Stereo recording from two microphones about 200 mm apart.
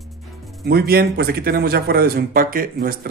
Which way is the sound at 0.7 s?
50° right (ahead or behind).